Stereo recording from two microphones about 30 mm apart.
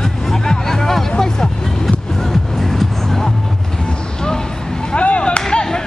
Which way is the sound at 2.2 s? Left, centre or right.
Centre.